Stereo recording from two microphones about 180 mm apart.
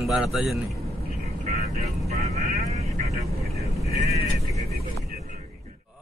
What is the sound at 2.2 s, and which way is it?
Vehicle, 40° right (ahead or behind).